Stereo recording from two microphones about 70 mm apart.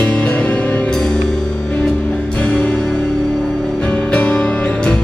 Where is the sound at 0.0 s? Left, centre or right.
Left.